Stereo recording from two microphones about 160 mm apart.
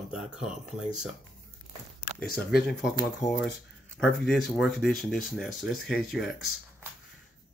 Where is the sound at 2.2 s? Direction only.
75° left (ahead or behind).